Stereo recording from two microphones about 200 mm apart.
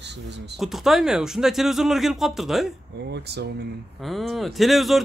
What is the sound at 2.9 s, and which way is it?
Speech, 55° right (ahead or behind).